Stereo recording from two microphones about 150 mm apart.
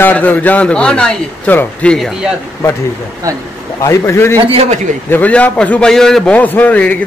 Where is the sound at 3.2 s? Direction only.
20° right (ahead or behind).